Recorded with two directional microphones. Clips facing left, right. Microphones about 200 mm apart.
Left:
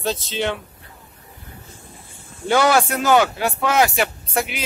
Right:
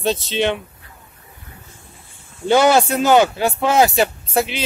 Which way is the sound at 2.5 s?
25° right (ahead or behind).